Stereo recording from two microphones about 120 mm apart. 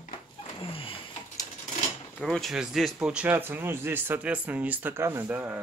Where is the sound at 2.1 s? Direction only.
5° left (ahead or behind).